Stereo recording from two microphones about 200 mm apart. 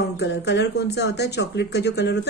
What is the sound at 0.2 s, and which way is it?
Speech, 60° left (ahead or behind).